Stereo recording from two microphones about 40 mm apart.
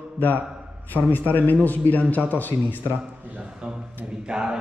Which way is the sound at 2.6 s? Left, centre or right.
Right.